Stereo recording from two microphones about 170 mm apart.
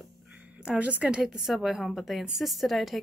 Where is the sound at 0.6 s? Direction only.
5° right (ahead or behind).